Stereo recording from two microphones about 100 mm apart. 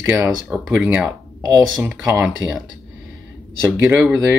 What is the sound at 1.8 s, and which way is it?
Speech, 20° right (ahead or behind).